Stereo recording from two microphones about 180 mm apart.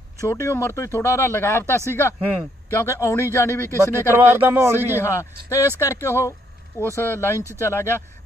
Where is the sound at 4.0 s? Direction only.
15° right (ahead or behind).